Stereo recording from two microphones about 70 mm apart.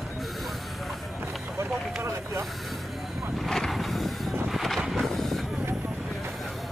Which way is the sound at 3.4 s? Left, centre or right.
Centre.